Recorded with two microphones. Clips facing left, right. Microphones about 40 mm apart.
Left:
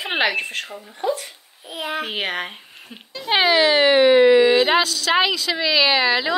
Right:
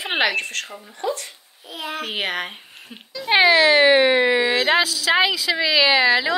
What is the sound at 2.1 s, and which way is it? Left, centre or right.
A woman's voice, centre.